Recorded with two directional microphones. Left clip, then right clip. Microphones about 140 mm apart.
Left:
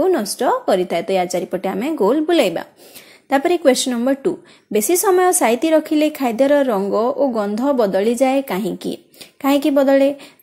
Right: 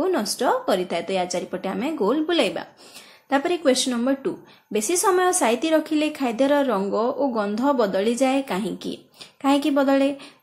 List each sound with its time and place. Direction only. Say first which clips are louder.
0.0 s a woman's voice: left 5 dB; 40° left (ahead or behind)